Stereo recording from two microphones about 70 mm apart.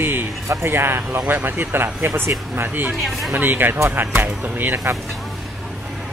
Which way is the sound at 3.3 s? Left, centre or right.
Right.